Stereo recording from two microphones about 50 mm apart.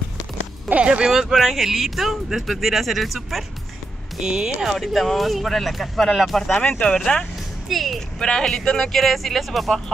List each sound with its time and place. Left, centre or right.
0.8 s speech: centre
1.3 s speech: centre
4.2 s speech: centre
4.6 s speech: centre
6.6 s speech: centre
7.6 s speech: centre
8.2 s speech: centre
9.0 s speech: centre